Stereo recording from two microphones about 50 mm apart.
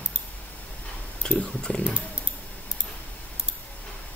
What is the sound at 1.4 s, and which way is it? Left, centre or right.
Speech, centre.